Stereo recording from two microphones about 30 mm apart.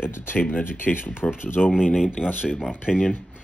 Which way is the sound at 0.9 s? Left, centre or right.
Left.